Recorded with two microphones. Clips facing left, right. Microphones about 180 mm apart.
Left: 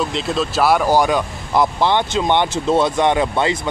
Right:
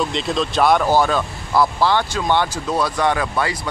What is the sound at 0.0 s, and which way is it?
Speech, centre (ahead or behind).